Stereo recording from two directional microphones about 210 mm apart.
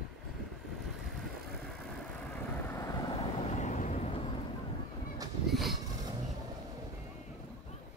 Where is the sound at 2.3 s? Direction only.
15° left (ahead or behind).